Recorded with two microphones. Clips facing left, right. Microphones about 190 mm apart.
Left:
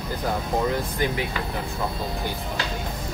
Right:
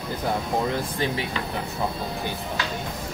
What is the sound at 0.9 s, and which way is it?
Speech, 30° right (ahead or behind).